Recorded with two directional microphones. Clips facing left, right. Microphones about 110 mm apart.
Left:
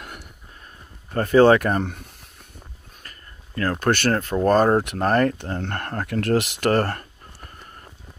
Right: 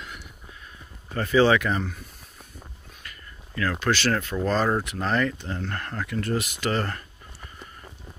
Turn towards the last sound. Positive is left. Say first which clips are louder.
# left 6 dB
turn(degrees=50)  # may be behind; listen again after turning